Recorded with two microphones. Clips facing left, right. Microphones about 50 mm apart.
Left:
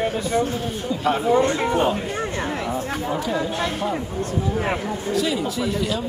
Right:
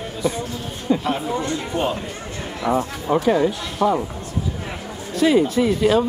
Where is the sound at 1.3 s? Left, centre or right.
Left.